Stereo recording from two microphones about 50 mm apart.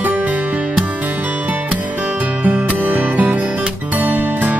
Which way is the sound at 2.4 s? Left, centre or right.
Right.